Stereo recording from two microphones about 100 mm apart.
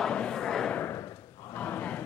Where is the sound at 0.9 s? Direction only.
25° left (ahead or behind).